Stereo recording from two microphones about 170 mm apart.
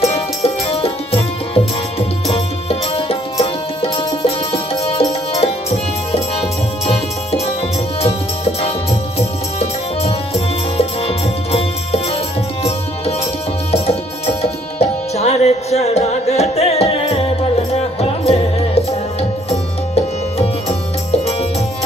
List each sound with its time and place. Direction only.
0.0 s music: 35° left (ahead or behind)
8.0 s music: 35° left (ahead or behind)
13.7 s tabla: 35° left (ahead or behind)
19.5 s music: 35° left (ahead or behind)